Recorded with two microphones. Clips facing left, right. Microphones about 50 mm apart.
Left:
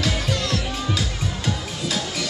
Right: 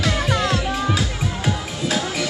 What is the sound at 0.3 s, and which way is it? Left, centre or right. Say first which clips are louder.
Music: right 4 dB; right.